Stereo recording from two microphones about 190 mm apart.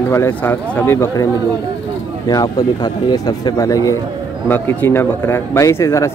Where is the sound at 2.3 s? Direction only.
20° left (ahead or behind).